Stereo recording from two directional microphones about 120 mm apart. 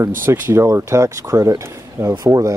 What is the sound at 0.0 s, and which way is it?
Speech, 20° right (ahead or behind).